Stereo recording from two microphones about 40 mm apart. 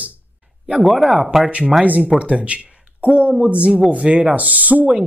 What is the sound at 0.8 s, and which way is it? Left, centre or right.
Speech, centre.